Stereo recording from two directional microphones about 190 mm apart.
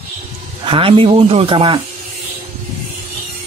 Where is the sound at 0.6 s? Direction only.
30° right (ahead or behind).